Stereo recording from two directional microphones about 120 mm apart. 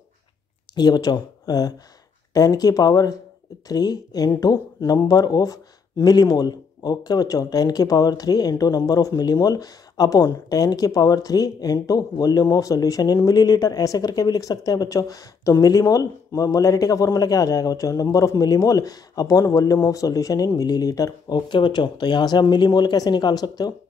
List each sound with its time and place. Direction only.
0.7 s speech: 35° left (ahead or behind)